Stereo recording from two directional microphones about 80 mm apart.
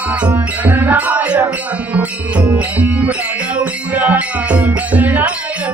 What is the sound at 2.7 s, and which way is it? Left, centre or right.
Music, centre.